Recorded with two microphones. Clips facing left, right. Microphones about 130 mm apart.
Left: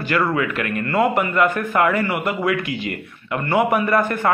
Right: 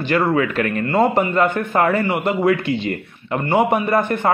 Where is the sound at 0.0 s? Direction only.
25° right (ahead or behind).